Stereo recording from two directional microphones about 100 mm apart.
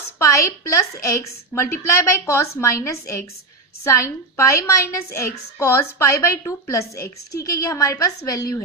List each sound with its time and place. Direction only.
0.2 s a woman's voice: 30° left (ahead or behind)